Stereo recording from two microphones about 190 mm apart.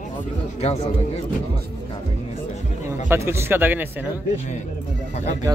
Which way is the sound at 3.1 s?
15° right (ahead or behind).